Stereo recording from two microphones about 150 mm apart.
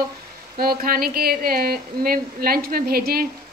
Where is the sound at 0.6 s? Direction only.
80° right.